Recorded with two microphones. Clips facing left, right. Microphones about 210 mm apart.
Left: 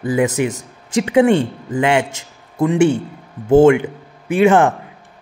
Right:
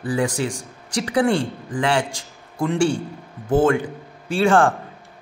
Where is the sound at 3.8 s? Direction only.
20° left (ahead or behind).